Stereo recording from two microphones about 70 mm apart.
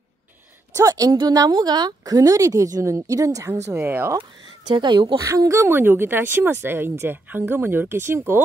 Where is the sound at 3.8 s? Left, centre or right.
Right.